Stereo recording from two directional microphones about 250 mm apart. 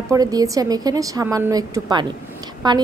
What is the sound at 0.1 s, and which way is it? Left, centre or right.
A woman's voice, centre.